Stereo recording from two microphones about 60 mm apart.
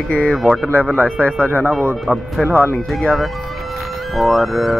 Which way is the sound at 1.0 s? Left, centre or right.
Centre.